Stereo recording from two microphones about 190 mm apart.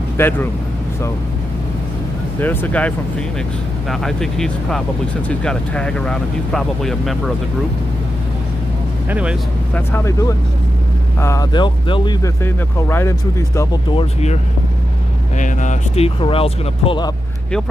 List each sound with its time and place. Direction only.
0.2 s speech: 10° left (ahead or behind)
2.4 s speech: 10° left (ahead or behind)
3.9 s speech: centre (ahead or behind)
9.1 s speech: 5° right (ahead or behind)
9.8 s speech: 15° left (ahead or behind)
12.4 s speech: 10° left (ahead or behind)
13.9 s speech: 35° left (ahead or behind)
16.2 s speech: 30° left (ahead or behind)